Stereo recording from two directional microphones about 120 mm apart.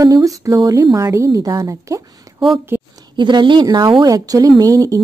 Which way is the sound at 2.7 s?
15° right (ahead or behind).